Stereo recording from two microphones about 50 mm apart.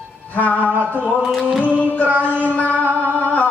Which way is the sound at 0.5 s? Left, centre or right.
Right.